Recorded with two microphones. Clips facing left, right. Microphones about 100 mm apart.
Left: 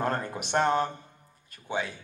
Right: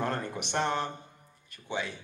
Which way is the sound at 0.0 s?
45° left (ahead or behind).